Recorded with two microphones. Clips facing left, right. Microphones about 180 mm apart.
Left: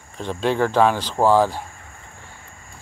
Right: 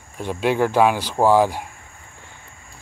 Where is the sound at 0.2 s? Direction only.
10° right (ahead or behind).